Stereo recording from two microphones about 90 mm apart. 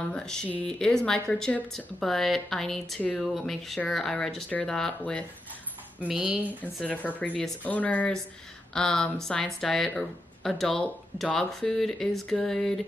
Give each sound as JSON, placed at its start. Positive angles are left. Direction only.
{"t": 0.1, "sound": "speech", "side_deg": 5}
{"t": 5.9, "sound": "speech", "side_deg": -15}
{"t": 6.6, "sound": "speech", "side_deg": 15}